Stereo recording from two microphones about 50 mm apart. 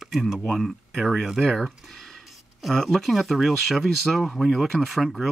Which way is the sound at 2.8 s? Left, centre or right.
Centre.